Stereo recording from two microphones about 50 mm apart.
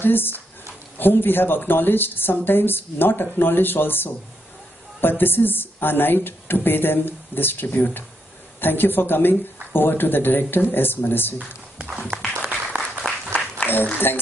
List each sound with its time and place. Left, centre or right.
0.0 s speech: left
12.4 s applause: right
13.3 s applause: left
13.9 s speech: left